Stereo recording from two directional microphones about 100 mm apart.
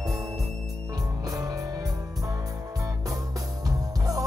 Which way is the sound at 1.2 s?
35° right (ahead or behind).